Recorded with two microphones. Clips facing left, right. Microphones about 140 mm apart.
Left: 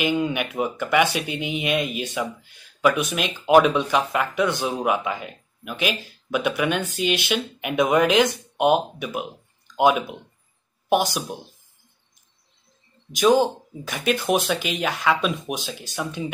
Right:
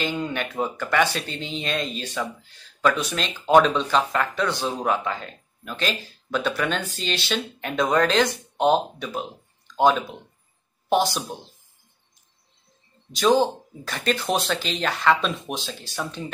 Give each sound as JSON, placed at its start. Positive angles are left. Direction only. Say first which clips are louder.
{"t": 0.0, "sound": "speech", "louder": "left 4 dB", "side_deg": 15}
{"t": 13.2, "sound": "speech", "louder": "left 1 dB", "side_deg": 15}